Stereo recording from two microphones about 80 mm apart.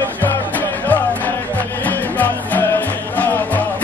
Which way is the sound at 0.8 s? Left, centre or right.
Left.